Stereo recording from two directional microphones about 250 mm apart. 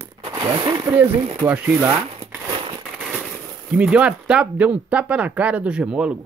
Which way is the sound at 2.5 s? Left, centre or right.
Centre.